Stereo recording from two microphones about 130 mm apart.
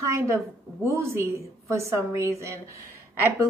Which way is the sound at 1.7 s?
20° right (ahead or behind).